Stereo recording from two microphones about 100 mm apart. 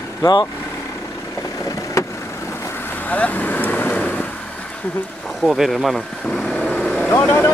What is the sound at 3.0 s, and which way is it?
Vehicle, 15° left (ahead or behind).